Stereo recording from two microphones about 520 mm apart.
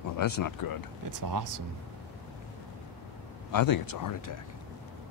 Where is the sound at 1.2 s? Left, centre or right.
Right.